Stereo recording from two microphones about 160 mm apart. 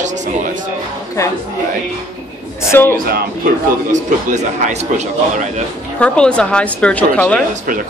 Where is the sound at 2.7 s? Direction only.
15° left (ahead or behind).